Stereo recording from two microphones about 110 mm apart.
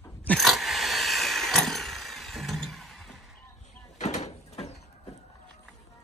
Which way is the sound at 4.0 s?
90° left.